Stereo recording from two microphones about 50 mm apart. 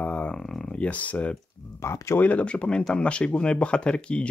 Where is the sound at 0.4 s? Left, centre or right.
Centre; by 1.3 s left.